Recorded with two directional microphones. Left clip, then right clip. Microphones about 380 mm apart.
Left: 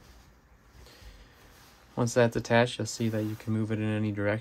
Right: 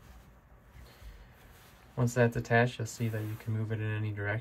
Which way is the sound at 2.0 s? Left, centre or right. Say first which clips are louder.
Left 4 dB; centre.